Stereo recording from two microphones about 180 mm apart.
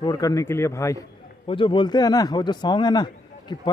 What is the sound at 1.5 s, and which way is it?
A man's voice, 25° left (ahead or behind).